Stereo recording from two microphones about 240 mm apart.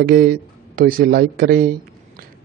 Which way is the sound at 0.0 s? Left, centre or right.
Right.